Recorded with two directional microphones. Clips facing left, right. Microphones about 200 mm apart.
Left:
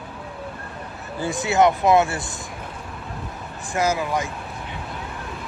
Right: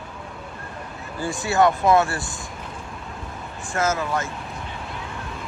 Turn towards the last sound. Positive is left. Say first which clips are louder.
# left 1 dB
turn(degrees=15)  # may be behind; listen again after turning